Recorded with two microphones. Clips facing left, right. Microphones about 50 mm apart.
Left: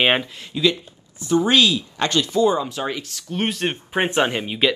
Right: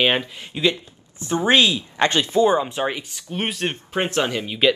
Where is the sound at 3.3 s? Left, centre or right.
Centre.